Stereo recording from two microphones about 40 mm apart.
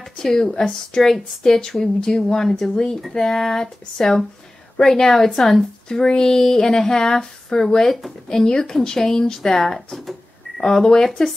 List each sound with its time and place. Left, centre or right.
0.2 s a woman's voice: centre
2.7 s a woman's voice: centre
10.6 s a woman's voice: centre